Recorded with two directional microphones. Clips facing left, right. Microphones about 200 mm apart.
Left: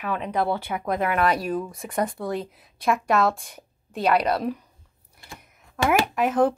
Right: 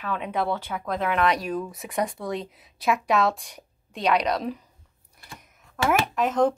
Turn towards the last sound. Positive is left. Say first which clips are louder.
# left 1 dB
turn(degrees=10)  # may be behind; listen again after turning